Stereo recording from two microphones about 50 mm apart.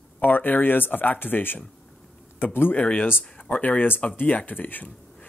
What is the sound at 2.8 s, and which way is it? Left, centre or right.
Speech, left.